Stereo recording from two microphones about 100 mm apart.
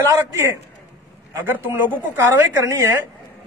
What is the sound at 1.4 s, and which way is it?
Speech, 20° right (ahead or behind).